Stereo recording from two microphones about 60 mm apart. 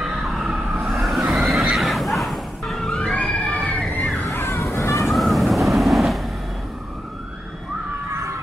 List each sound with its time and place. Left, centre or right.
0.0 s neigh: centre
3.0 s crowd: centre
4.2 s slosh: left
4.7 s vehicle: left
5.1 s vehicle: centre
8.1 s a sound: right